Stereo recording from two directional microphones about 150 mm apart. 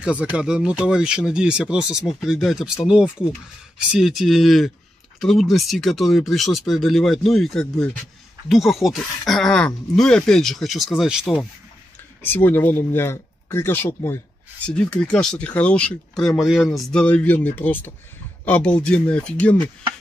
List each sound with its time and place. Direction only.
0.0 s speech: 10° right (ahead or behind)
12.2 s speech: 15° left (ahead or behind)